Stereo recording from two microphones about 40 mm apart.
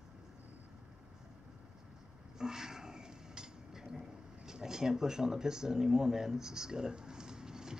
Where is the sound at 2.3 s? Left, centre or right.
Centre.